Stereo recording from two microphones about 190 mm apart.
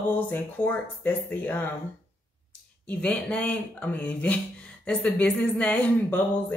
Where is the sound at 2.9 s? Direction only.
5° left (ahead or behind).